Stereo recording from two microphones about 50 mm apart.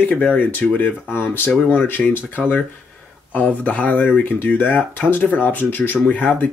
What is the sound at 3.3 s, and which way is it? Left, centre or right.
Speech, left.